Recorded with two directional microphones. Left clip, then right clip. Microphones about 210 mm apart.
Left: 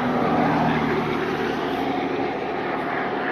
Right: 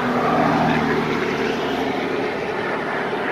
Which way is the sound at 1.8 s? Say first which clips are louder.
Right 2 dB; 40° left (ahead or behind).